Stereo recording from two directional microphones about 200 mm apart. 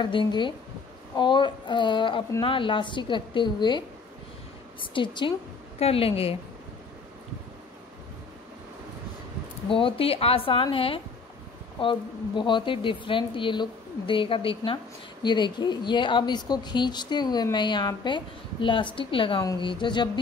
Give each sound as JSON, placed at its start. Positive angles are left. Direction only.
{"t": 0.0, "sound": "speech", "side_deg": 25}
{"t": 4.9, "sound": "speech", "side_deg": 25}
{"t": 9.7, "sound": "speech", "side_deg": 25}